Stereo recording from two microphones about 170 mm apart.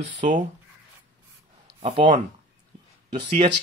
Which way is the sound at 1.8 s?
40° right (ahead or behind).